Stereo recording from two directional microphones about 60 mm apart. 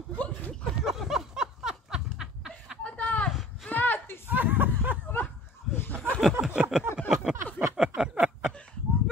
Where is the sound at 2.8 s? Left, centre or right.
Left.